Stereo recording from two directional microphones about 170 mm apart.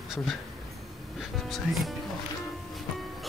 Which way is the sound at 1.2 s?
Centre (ahead or behind).